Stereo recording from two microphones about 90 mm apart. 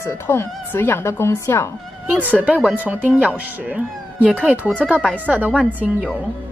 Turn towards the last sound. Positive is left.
turn(degrees=-15)  # may be behind; listen again after turning